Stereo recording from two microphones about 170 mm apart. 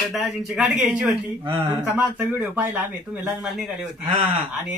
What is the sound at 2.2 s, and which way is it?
Speech, 10° right (ahead or behind).